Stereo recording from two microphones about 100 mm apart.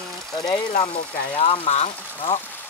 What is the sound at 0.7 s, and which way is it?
Speech, 70° left (ahead or behind).